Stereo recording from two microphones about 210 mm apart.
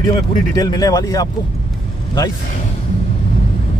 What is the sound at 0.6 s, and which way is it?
Speech, 15° left (ahead or behind).